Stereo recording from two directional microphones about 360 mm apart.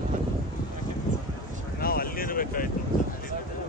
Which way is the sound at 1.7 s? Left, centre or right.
Left.